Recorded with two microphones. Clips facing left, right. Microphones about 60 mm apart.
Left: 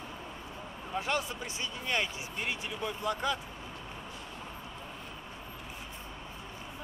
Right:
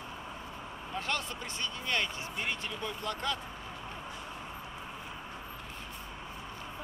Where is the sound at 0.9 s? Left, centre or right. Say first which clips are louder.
Left 3 dB; centre.